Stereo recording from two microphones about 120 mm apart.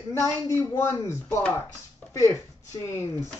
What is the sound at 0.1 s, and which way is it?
Speech, 25° left (ahead or behind).